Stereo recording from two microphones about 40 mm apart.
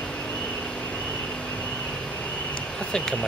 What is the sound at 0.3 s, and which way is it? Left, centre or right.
Vehicle, centre.